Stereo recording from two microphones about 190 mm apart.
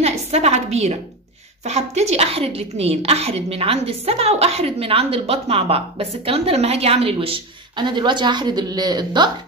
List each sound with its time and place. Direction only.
0.0 s a woman's voice: 35° right (ahead or behind)